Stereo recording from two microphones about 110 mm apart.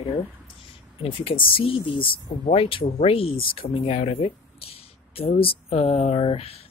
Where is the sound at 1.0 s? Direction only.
55° left (ahead or behind).